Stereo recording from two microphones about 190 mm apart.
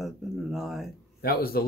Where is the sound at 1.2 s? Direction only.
55° left (ahead or behind).